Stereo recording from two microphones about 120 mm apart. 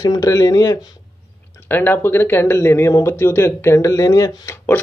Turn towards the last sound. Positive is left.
turn(degrees=30)  # may be behind; listen again after turning